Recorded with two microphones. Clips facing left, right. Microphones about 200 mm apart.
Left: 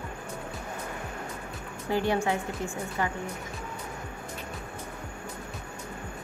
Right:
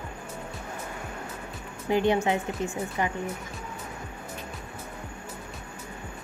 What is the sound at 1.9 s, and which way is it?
Speech, 20° right (ahead or behind).